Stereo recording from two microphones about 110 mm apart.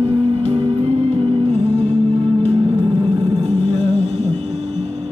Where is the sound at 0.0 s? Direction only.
65° right (ahead or behind).